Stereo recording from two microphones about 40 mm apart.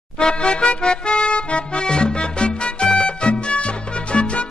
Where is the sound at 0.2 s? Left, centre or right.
Left.